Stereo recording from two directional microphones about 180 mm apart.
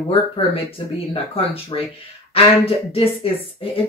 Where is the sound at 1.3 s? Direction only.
30° left (ahead or behind).